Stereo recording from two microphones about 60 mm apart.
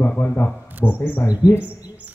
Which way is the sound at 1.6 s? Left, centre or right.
Right.